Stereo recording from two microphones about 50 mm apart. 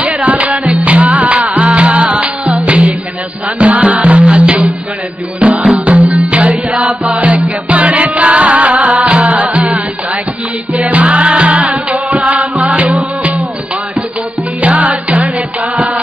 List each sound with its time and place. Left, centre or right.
0.0 s music: right
10.9 s music: right
14.6 s music: right